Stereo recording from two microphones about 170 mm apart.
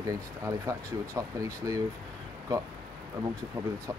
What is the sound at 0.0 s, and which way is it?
Speech, 20° right (ahead or behind).